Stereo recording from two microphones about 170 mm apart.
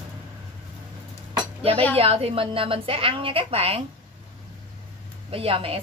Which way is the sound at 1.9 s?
35° right (ahead or behind).